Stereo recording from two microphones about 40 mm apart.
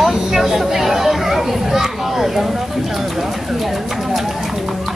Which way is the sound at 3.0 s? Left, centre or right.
Centre.